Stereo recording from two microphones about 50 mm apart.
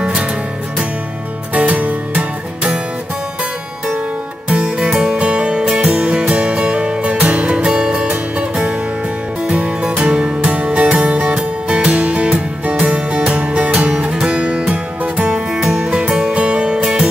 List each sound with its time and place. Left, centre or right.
0.0 s music: right
1.5 s music: right
4.5 s music: right